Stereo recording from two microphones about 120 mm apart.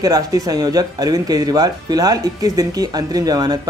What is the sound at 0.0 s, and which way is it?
Speech, 30° right (ahead or behind).